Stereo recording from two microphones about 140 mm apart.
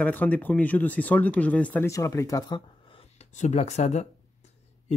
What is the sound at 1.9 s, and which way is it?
Speech, 25° left (ahead or behind).